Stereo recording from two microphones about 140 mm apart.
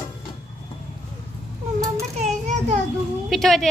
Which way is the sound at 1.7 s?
25° right (ahead or behind).